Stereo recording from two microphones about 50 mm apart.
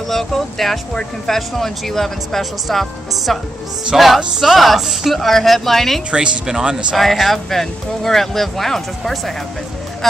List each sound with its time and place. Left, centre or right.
0.1 s speech: centre
6.1 s speech: centre
7.0 s speech: centre